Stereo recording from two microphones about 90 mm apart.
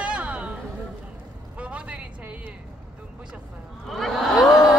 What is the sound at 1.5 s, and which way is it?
Speech, 15° right (ahead or behind).